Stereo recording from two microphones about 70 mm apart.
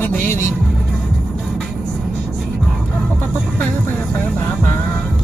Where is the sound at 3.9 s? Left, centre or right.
Centre.